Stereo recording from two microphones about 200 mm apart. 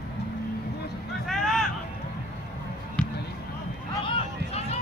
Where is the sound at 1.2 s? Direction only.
Centre (ahead or behind).